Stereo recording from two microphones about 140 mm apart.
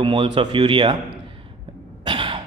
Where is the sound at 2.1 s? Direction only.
35° right (ahead or behind).